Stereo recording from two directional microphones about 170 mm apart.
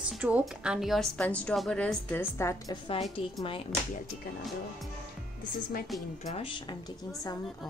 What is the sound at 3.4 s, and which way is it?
Speech, 30° left (ahead or behind).